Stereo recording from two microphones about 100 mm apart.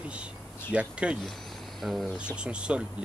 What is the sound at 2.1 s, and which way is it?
Speech, 10° right (ahead or behind).